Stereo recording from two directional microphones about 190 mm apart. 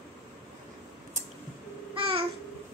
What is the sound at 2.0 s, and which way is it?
Babbling, 25° right (ahead or behind).